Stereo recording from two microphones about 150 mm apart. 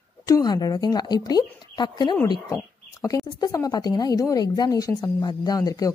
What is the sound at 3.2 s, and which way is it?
A woman's voice, 25° left (ahead or behind).